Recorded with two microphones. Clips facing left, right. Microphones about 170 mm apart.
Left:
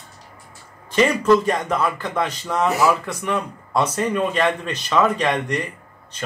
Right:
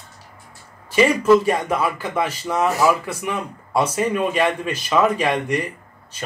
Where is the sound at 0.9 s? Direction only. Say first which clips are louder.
Right 2 dB; 10° right (ahead or behind).